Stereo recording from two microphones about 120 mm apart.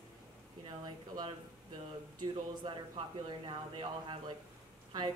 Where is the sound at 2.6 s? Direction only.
45° right (ahead or behind).